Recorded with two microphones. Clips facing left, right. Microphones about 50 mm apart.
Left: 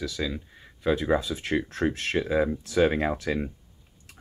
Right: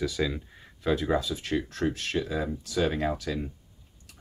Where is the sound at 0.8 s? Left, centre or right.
Centre.